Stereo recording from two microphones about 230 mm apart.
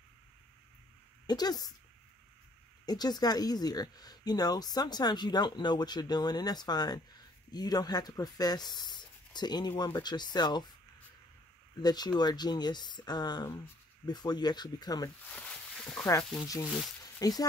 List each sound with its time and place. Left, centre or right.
1.2 s speech: centre
2.8 s speech: centre
11.7 s speech: centre
15.3 s a sound: centre
17.2 s speech: centre